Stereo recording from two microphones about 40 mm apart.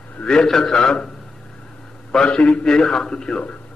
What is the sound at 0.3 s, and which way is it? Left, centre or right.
Speech, centre.